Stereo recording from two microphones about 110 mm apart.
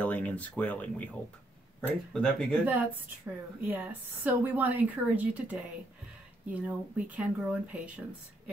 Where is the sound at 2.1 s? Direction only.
5° left (ahead or behind).